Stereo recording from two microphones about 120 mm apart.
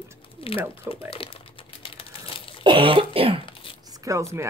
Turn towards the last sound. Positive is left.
turn(degrees=-25)  # may be behind; listen again after turning